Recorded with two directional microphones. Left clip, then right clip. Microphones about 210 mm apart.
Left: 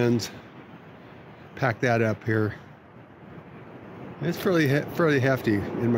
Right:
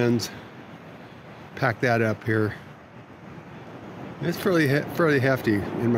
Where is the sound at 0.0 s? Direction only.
Centre (ahead or behind).